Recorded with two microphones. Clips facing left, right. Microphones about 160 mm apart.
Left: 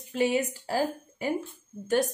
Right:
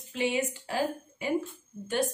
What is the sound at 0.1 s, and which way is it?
A woman's voice, 40° left (ahead or behind).